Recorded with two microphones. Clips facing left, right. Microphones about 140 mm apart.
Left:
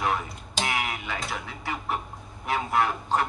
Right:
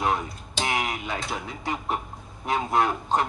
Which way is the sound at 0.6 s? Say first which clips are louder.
Right 2 dB; 35° right (ahead or behind).